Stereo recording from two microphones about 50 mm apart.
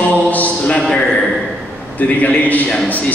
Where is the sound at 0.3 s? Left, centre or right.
Left.